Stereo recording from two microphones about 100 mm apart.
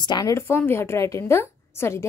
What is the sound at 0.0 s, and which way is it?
A woman's voice, 40° left (ahead or behind).